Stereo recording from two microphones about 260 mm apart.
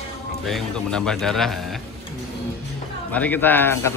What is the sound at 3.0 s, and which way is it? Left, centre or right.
Speech, centre.